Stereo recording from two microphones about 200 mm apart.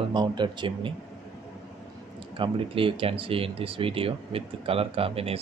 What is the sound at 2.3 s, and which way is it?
Speech, 25° right (ahead or behind).